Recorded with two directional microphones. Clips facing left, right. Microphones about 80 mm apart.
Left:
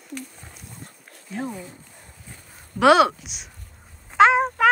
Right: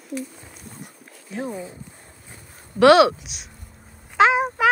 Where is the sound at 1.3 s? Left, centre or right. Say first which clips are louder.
Right 1 dB; centre.